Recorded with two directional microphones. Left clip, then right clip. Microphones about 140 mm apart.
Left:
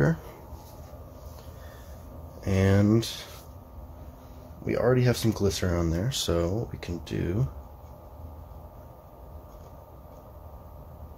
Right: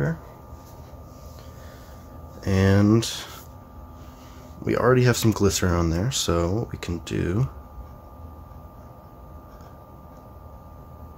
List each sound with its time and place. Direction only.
2.4 s speech: 15° right (ahead or behind)
4.6 s speech: 35° right (ahead or behind)